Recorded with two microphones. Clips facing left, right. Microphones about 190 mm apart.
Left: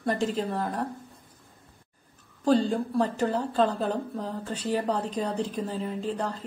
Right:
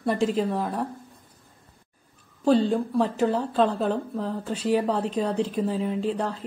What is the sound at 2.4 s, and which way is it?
A woman's voice, 5° right (ahead or behind).